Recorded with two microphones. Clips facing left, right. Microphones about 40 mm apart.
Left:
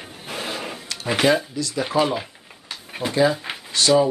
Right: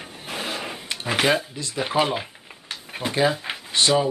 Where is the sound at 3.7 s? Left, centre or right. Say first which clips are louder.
Left 3 dB; right.